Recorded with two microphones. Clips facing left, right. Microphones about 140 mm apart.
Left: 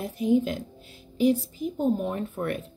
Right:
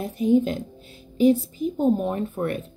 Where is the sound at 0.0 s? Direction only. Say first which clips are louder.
Right 3 dB; 25° right (ahead or behind).